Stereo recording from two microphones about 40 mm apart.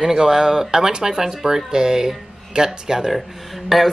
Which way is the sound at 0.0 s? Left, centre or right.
Centre.